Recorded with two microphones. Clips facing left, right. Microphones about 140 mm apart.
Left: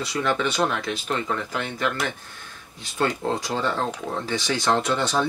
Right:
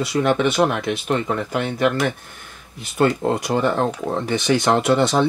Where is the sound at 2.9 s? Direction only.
20° right (ahead or behind).